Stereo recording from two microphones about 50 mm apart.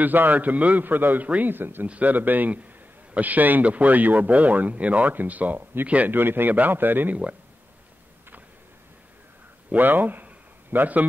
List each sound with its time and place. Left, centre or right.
0.0 s speech: right
1.9 s speech: right
6.1 s speech: right
9.8 s a man's voice: right